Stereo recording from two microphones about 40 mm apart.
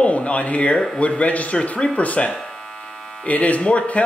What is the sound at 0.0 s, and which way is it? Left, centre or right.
Speech, left.